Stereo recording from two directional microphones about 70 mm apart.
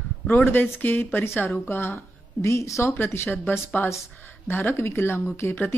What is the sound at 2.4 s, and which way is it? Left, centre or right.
Speech, left.